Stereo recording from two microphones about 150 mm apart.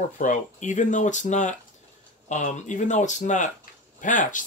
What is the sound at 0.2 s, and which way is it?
Speech, 55° left (ahead or behind).